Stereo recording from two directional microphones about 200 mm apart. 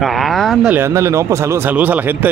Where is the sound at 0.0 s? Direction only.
Centre (ahead or behind).